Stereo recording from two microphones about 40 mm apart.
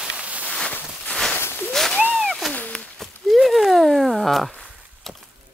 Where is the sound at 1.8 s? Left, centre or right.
Centre.